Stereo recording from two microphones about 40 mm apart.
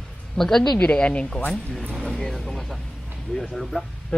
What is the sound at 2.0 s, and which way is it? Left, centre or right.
Speech, centre.